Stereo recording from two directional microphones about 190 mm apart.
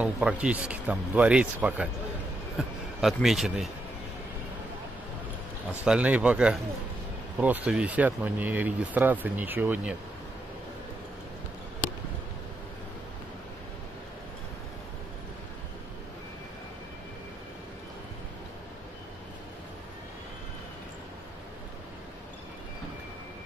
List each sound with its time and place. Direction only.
0.0 s a man's voice: 5° right (ahead or behind)
5.7 s speech: 5° right (ahead or behind)